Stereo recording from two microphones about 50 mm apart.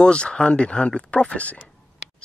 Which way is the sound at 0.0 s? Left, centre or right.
Left.